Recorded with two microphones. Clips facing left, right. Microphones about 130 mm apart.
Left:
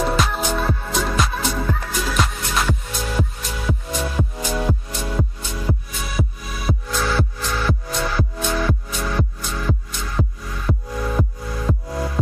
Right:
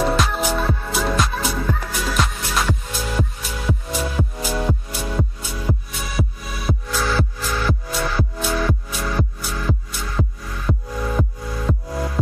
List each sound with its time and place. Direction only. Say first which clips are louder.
0.0 s music: right 1 dB; centre (ahead or behind)